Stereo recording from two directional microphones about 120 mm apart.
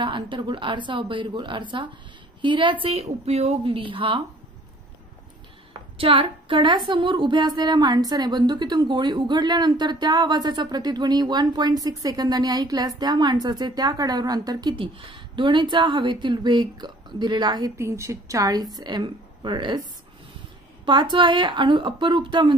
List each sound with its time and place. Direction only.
0.0 s a woman's voice: 40° right (ahead or behind)
5.7 s a woman's voice: 50° right (ahead or behind)
17.7 s a woman's voice: 25° right (ahead or behind); by 19.8 s 40° right (ahead or behind)
20.8 s a woman's voice: 40° right (ahead or behind)